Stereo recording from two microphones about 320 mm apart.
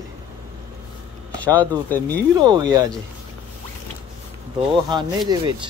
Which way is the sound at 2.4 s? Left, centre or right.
Centre.